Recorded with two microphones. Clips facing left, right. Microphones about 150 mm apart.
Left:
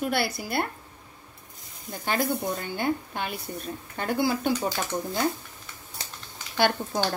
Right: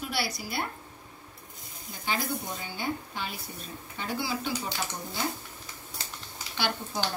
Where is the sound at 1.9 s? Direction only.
55° left (ahead or behind).